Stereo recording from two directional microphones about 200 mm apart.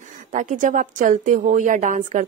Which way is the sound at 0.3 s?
40° right (ahead or behind).